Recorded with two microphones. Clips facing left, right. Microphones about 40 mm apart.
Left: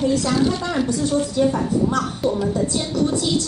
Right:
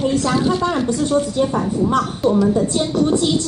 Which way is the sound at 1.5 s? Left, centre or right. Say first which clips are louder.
Right 2 dB; right.